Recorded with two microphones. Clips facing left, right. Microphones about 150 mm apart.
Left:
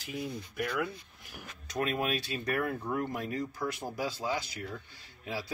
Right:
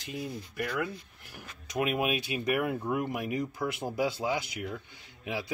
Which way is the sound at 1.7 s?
15° right (ahead or behind).